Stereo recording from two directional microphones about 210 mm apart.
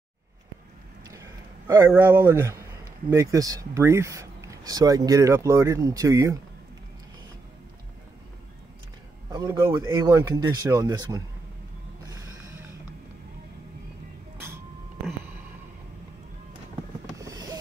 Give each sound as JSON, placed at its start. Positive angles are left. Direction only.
{"t": 1.7, "sound": "speech", "side_deg": -10}
{"t": 9.3, "sound": "speech", "side_deg": -20}
{"t": 17.2, "sound": "a sound", "side_deg": -15}